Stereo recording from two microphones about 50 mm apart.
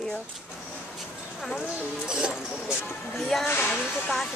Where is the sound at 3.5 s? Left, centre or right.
Left.